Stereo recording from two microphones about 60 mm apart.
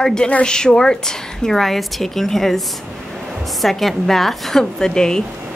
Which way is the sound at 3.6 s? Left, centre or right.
Centre.